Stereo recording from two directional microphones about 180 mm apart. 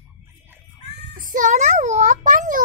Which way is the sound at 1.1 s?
45° right (ahead or behind).